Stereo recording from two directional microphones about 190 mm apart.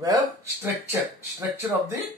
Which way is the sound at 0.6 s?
15° right (ahead or behind).